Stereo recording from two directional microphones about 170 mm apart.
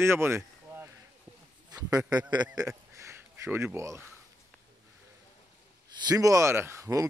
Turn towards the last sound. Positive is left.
turn(degrees=-15)  # may be behind; listen again after turning